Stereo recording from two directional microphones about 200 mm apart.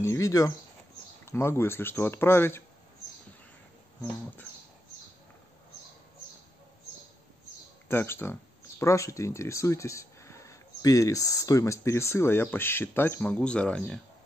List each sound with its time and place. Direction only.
0.0 s speech: 15° left (ahead or behind)
7.9 s speech: 10° left (ahead or behind)